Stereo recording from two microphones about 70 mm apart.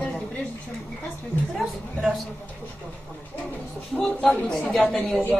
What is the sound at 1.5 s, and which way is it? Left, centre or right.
Speech, centre.